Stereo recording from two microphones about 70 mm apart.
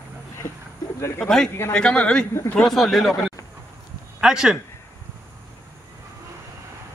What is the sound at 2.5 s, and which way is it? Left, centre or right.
Speech, centre.